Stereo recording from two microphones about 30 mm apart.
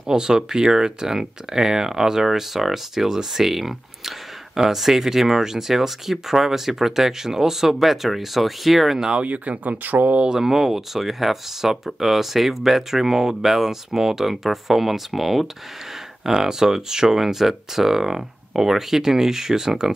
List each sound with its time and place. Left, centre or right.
0.1 s speech: right; by 9.0 s centre
9.2 s speech: right
10.4 s speech: centre
16.3 s speech: centre